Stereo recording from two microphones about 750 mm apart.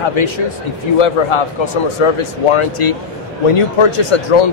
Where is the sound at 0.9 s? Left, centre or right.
Left.